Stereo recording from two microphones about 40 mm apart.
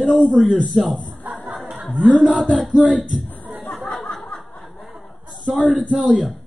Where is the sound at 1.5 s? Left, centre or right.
Centre.